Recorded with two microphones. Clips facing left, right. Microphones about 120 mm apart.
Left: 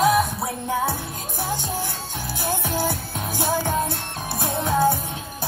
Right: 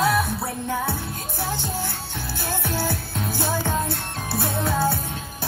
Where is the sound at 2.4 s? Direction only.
15° left (ahead or behind).